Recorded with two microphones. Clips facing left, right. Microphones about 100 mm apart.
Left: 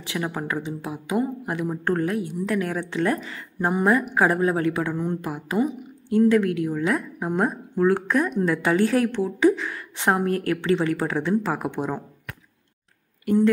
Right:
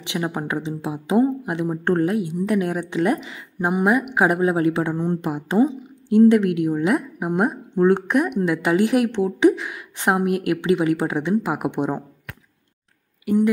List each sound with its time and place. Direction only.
0.0 s a woman's voice: 20° right (ahead or behind)
13.2 s speech: 5° right (ahead or behind)